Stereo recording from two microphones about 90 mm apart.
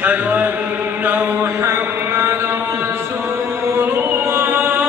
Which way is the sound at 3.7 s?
25° right (ahead or behind).